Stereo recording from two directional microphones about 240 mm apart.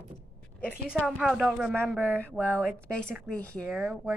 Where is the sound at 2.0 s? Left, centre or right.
Centre.